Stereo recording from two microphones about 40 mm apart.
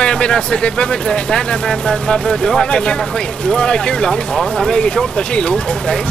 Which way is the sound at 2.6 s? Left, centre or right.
Left.